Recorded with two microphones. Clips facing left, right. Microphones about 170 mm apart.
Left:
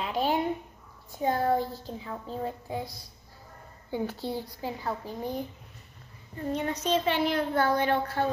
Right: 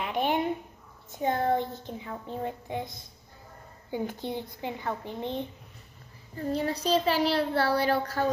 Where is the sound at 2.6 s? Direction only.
20° right (ahead or behind).